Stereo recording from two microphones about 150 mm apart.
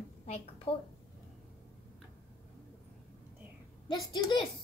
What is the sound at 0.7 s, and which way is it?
Speech, 35° left (ahead or behind).